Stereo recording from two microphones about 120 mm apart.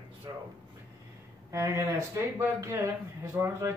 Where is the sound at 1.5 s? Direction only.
25° right (ahead or behind).